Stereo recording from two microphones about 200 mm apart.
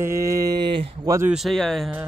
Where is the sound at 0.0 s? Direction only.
15° right (ahead or behind).